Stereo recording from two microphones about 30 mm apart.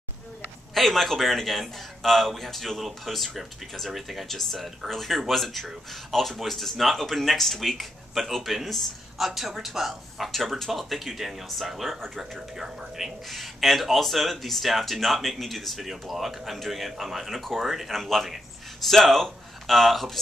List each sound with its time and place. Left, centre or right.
0.7 s speech: centre
4.3 s speech: centre
11.7 s speech: centre
13.4 s speech: centre
15.8 s speech: centre
17.9 s speech: centre